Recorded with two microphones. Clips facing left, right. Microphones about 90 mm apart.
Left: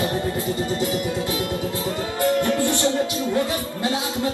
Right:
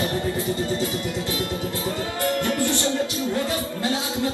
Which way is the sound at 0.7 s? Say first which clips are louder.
Left 3 dB; 20° left (ahead or behind).